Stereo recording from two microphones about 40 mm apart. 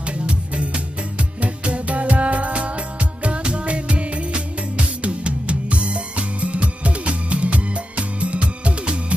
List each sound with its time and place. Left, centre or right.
0.0 s music: right